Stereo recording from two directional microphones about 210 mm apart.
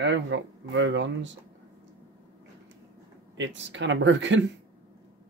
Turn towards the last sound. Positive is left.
turn(degrees=-60)  # may be behind; listen again after turning